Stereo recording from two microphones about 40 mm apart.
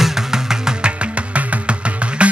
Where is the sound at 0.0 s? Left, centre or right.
Centre.